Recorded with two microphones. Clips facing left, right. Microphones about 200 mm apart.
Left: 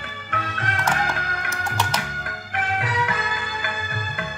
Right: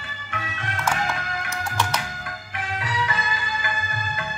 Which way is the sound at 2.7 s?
60° left (ahead or behind).